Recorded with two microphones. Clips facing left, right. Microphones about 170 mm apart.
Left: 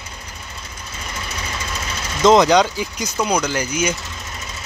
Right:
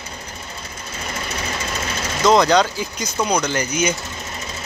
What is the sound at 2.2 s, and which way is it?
Speech, 15° left (ahead or behind).